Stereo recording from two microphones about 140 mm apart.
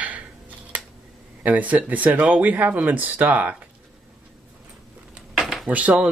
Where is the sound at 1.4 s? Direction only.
10° right (ahead or behind).